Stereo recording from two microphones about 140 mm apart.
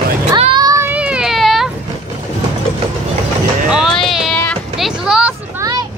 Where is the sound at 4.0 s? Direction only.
Centre (ahead or behind).